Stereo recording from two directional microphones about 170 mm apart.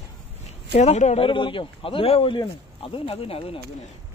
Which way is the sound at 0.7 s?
40° left (ahead or behind).